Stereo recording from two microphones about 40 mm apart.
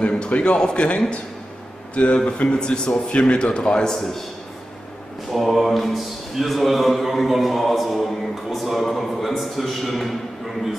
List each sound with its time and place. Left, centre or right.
0.0 s speech: left
3.9 s a man's voice: centre
5.3 s speech: centre